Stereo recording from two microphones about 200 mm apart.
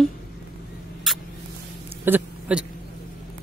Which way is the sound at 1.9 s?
10° right (ahead or behind).